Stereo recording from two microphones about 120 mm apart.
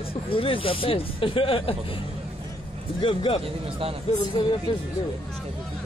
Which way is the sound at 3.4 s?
50° right (ahead or behind).